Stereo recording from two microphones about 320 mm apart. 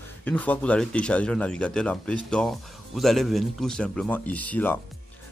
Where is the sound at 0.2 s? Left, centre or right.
Centre.